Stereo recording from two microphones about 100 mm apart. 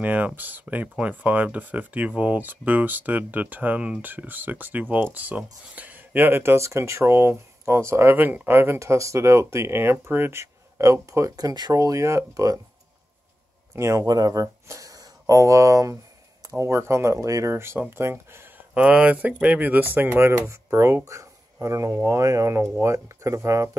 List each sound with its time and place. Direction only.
0.0 s speech: 15° right (ahead or behind)
13.7 s speech: 30° right (ahead or behind)
18.8 s speech: 10° right (ahead or behind); by 23.8 s 30° right (ahead or behind)